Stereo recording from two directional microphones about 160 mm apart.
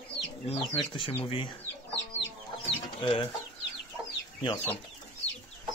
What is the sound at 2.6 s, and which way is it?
Chicken, 35° left (ahead or behind).